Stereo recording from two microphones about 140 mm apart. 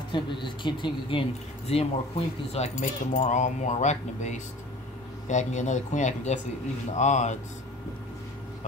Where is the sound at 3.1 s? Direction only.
60° left (ahead or behind).